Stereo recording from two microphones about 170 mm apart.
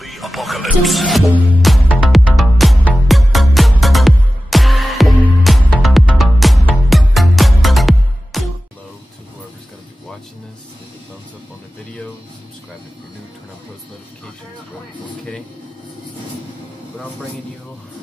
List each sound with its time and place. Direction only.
0.0 s music: centre (ahead or behind)